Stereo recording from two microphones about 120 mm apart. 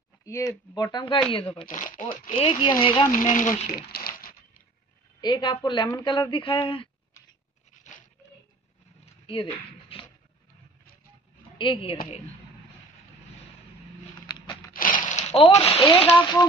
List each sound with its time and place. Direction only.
0.2 s speech: 25° left (ahead or behind)
0.9 s speech: 40° left (ahead or behind)
1.7 s speech: 90° left
2.3 s speech: 50° left (ahead or behind)
3.1 s speech: 90° left
5.2 s speech: 40° left (ahead or behind)
9.2 s a sound: 45° left (ahead or behind)
11.5 s speech: 45° left (ahead or behind)
14.2 s a sound: 40° left (ahead or behind)
15.0 s a sound: 75° left (ahead or behind)
15.5 s speech: 60° left (ahead or behind)
15.9 s speech: 45° left (ahead or behind)